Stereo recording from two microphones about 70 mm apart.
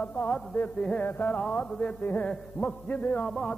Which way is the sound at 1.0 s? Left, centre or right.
Left.